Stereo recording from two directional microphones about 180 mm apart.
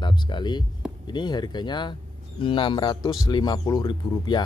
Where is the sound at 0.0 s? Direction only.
25° left (ahead or behind).